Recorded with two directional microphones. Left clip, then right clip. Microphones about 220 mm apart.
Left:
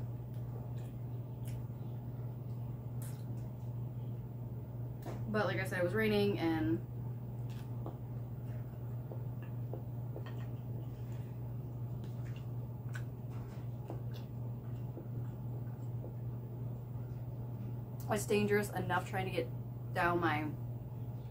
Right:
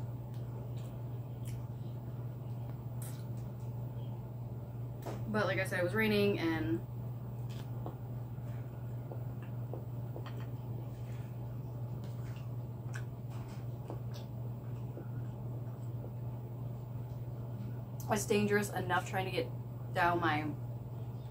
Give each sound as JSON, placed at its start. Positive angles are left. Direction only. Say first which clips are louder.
{"t": 5.3, "sound": "a woman's voice", "louder": "right 2 dB", "side_deg": 5}
{"t": 18.0, "sound": "a woman's voice", "louder": "right 1 dB", "side_deg": 5}